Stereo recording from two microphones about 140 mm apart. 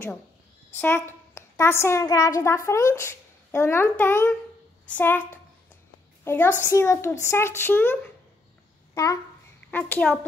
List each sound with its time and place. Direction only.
0.7 s a woman's voice: 15° left (ahead or behind)
8.9 s a child's voice: 25° left (ahead or behind)
9.7 s a child's voice: 10° left (ahead or behind)